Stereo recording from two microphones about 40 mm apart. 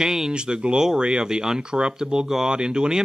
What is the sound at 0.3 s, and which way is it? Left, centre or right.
Speech, right.